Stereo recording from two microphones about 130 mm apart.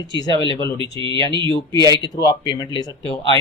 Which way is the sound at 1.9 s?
30° left (ahead or behind).